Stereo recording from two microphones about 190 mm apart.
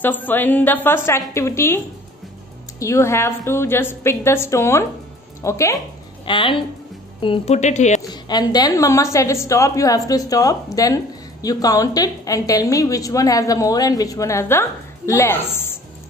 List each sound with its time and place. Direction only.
0.0 s a woman's voice: 10° left (ahead or behind)
2.8 s a woman's voice: 15° left (ahead or behind)
6.2 s a woman's voice: 25° left (ahead or behind)
8.1 s a woman's voice: 20° left (ahead or behind)